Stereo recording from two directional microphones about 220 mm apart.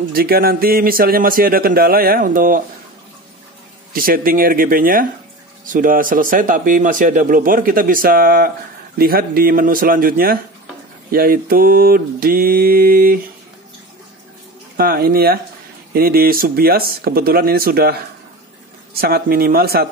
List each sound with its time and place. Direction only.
0.1 s speech: 45° right (ahead or behind)
3.9 s speech: 40° right (ahead or behind)
14.8 s speech: 45° right (ahead or behind)